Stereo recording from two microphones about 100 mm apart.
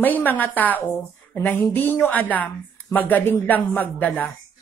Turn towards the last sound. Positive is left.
turn(degrees=15)  # may be behind; listen again after turning